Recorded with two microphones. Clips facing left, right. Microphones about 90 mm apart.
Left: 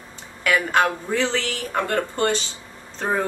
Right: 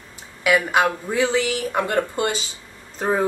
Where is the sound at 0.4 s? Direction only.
10° right (ahead or behind).